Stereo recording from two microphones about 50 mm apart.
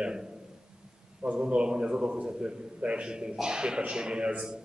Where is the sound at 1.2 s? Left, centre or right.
Centre.